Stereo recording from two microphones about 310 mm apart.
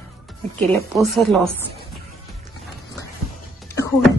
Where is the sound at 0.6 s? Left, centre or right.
Centre.